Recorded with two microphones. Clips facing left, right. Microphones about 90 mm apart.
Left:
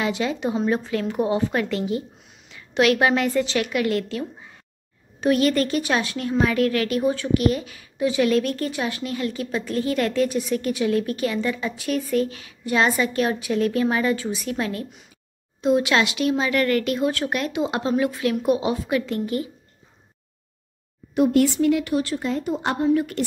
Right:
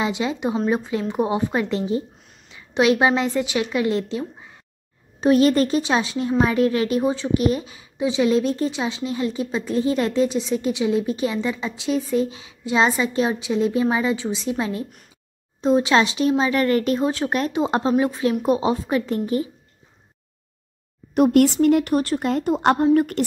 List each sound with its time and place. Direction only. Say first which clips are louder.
0.0 s a woman's voice: right 1 dB; 20° right (ahead or behind)
5.2 s a woman's voice: right 3 dB; 30° right (ahead or behind)
21.1 s speech: right 3 dB; 60° right (ahead or behind)
22.9 s speech: right 4 dB; 50° right (ahead or behind)